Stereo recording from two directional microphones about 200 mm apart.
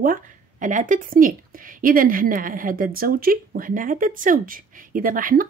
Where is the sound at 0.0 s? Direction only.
40° right (ahead or behind).